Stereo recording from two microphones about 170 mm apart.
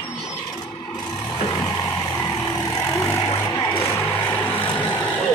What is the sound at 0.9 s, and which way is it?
Vehicle, 25° left (ahead or behind).